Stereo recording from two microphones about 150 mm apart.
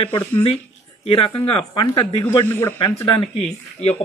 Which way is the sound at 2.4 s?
15° left (ahead or behind).